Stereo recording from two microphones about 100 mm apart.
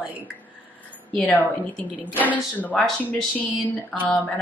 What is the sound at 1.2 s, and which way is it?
Speech, 15° left (ahead or behind).